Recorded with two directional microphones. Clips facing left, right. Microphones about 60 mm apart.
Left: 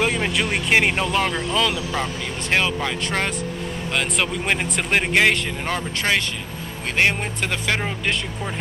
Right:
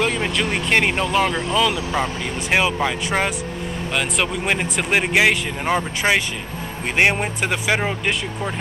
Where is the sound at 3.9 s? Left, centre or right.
Centre.